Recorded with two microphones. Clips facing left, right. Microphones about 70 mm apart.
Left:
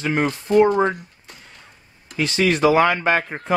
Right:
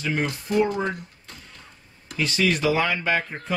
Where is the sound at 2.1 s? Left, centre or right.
Left.